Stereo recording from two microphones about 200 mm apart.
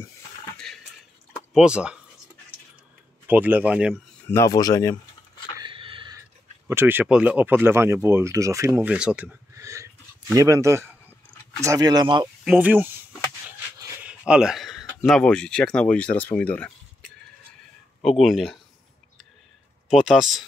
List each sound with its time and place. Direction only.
0.7 s a sound: 5° left (ahead or behind)
1.5 s speech: 5° right (ahead or behind)
3.3 s speech: 10° right (ahead or behind)
4.3 s speech: 15° left (ahead or behind)
5.6 s a sound: 25° right (ahead or behind)
6.7 s speech: 10° right (ahead or behind)
12.4 s speech: 10° right (ahead or behind)
13.7 s a sound: 15° right (ahead or behind)
14.2 s speech: 5° right (ahead or behind)
18.2 s speech: centre (ahead or behind)
19.9 s speech: centre (ahead or behind)